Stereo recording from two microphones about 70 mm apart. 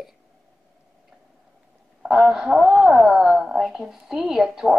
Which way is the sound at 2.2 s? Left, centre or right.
Centre.